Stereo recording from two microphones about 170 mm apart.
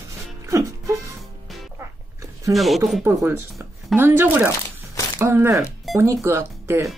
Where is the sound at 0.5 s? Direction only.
20° right (ahead or behind).